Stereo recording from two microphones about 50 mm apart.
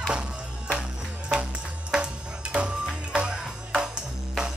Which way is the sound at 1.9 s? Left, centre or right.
Right.